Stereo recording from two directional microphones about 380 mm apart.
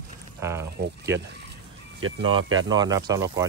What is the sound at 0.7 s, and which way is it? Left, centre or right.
Speech, right.